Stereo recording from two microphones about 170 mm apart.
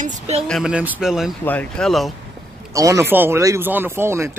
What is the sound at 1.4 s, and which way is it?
Speech, 10° left (ahead or behind).